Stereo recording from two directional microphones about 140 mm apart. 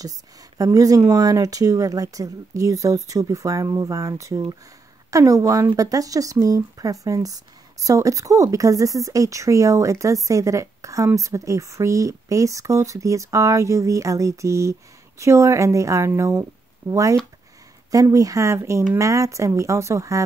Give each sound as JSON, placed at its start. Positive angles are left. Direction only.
{"t": 0.6, "sound": "speech", "side_deg": -25}